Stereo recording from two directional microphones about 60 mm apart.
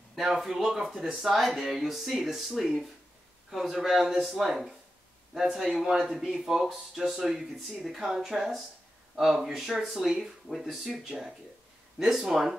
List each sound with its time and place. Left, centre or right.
0.1 s speech: centre